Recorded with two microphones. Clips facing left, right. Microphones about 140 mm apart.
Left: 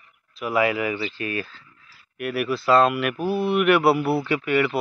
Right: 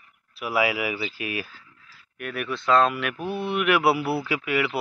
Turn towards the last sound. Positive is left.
turn(degrees=0)  # may be behind; listen again after turning